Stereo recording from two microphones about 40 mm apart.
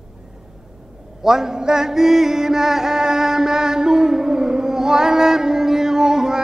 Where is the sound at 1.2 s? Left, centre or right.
Centre.